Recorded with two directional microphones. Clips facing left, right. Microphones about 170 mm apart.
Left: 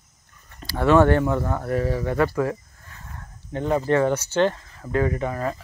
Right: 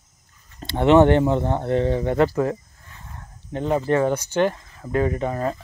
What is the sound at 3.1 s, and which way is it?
Dog, 20° right (ahead or behind).